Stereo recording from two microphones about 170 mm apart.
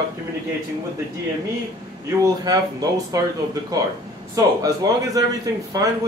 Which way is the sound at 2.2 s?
20° right (ahead or behind).